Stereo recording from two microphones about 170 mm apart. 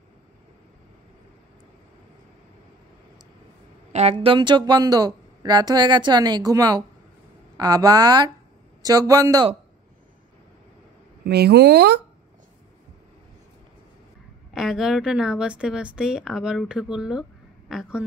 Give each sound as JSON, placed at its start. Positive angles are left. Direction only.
{"t": 3.9, "sound": "speech", "side_deg": -40}
{"t": 11.2, "sound": "speech", "side_deg": -75}
{"t": 14.5, "sound": "speech", "side_deg": 0}